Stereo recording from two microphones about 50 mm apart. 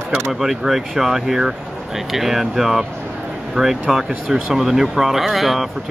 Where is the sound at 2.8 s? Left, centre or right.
Centre.